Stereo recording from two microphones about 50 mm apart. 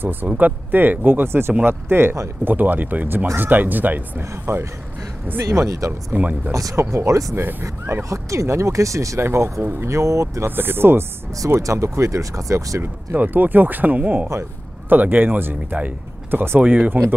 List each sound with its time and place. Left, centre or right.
0.0 s speech: right
2.4 s speech: right
4.5 s speech: right
5.4 s speech: right
6.1 s speech: right
6.5 s speech: right
8.1 s speech: right
9.2 s speech: right
9.8 s speech: right
10.5 s speech: right
11.6 s speech: right
13.1 s speech: right
16.5 s speech: right